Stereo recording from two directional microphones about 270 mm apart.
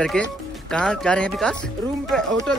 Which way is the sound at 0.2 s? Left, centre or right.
Centre.